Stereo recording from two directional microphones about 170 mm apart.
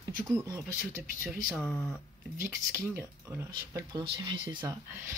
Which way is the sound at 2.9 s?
15° right (ahead or behind).